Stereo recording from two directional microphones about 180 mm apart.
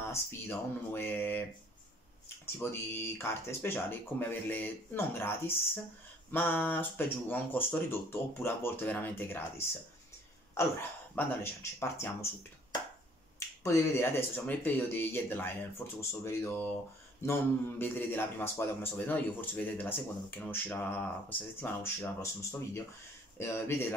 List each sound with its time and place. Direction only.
0.1 s a man's voice: 15° left (ahead or behind)
6.3 s a man's voice: 10° left (ahead or behind)
13.7 s a man's voice: 15° left (ahead or behind)